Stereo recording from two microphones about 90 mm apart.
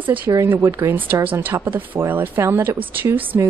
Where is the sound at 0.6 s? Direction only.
40° right (ahead or behind).